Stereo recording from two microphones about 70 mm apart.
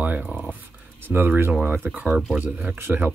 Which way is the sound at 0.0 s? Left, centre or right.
Right.